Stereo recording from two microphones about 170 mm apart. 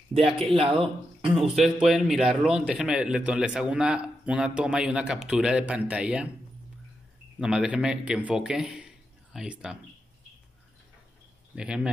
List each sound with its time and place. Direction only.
0.5 s speech: 30° right (ahead or behind)
1.5 s a man's voice: centre (ahead or behind)
7.3 s a man's voice: 5° right (ahead or behind)
11.5 s a man's voice: 5° right (ahead or behind)